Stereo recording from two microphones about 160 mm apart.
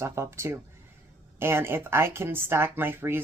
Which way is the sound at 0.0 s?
15° right (ahead or behind).